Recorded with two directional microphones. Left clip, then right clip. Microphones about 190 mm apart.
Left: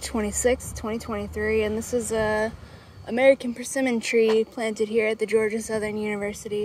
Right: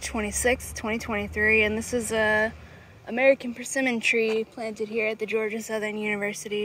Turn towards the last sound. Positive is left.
turn(degrees=10)  # may be behind; listen again after turning